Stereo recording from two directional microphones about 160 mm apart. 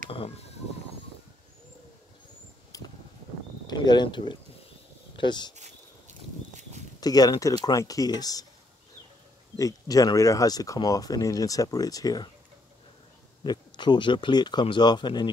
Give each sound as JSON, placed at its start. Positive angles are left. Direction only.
{"t": 0.1, "sound": "speech", "side_deg": 35}
{"t": 2.7, "sound": "a sound", "side_deg": 25}
{"t": 3.6, "sound": "speech", "side_deg": 25}
{"t": 5.6, "sound": "a sound", "side_deg": -50}
{"t": 7.0, "sound": "speech", "side_deg": 25}
{"t": 9.6, "sound": "speech", "side_deg": 20}
{"t": 13.4, "sound": "speech", "side_deg": 30}